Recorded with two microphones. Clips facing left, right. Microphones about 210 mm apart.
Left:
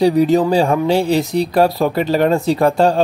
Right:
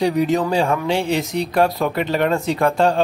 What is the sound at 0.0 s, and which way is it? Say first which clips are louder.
Speech: left 5 dB; 35° left (ahead or behind).